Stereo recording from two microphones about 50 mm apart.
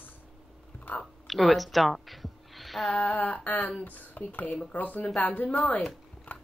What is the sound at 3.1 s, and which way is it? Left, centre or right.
A woman's voice, left.